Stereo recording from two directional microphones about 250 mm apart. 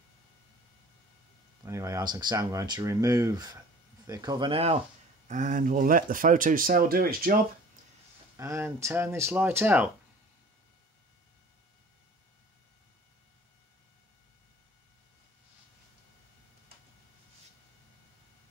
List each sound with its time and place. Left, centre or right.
1.6 s speech: centre; by 7.3 s right
8.4 s speech: centre